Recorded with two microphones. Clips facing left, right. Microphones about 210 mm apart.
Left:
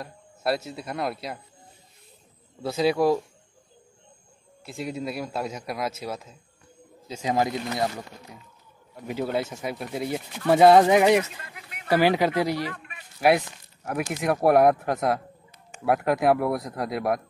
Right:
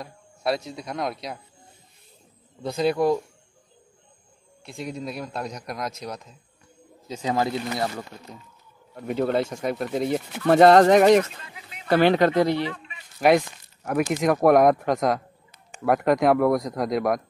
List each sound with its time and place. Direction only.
0.0 s speech: centre (ahead or behind)
2.6 s a man's voice: centre (ahead or behind)
4.6 s a man's voice: centre (ahead or behind); by 7.8 s 15° left (ahead or behind)
9.0 s speech: 55° right (ahead or behind)
9.3 s a man's voice: 5° left (ahead or behind)
13.8 s a man's voice: 5° left (ahead or behind)